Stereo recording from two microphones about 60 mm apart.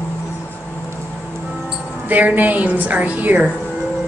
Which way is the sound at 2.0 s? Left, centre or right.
Right.